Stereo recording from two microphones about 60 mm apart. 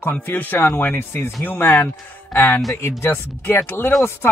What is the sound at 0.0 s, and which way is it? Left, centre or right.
Speech, left.